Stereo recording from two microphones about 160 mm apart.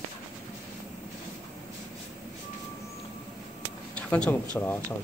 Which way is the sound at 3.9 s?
5° left (ahead or behind).